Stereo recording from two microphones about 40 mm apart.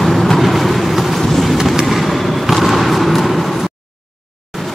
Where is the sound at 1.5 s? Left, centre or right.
Centre.